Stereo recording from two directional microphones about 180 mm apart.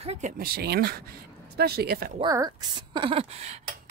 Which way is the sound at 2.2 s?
20° right (ahead or behind).